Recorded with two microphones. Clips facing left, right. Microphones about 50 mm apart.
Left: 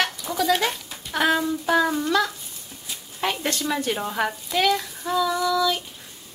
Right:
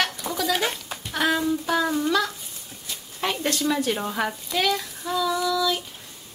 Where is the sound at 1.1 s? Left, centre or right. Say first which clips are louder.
Left 1 dB; centre.